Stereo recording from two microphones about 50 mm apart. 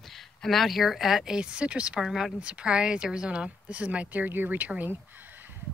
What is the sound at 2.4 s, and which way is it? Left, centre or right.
Speech, right.